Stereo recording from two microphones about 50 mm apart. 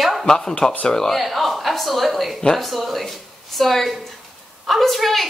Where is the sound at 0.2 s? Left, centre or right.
Centre.